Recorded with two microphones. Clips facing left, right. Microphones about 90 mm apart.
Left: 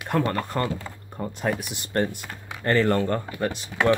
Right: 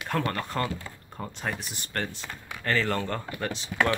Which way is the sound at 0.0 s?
20° left (ahead or behind).